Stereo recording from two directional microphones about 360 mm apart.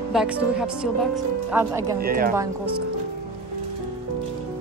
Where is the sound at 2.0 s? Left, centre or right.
Right.